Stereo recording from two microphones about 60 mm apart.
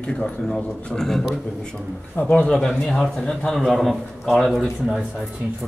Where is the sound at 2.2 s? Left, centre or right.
Left.